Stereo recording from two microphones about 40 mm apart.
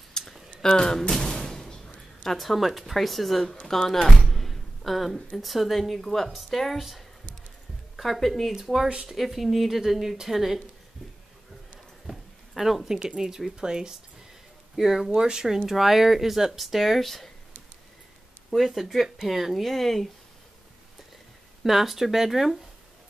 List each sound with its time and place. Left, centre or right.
0.2 s a sound: centre
0.6 s speech: centre
1.1 s a sound: centre
2.2 s speech: centre
4.0 s a sound: centre
5.4 s speech: centre
8.5 s speech: centre
9.1 s speech: centre
12.1 s a sound: centre
13.6 s speech: centre
18.5 s speech: centre
21.6 s speech: centre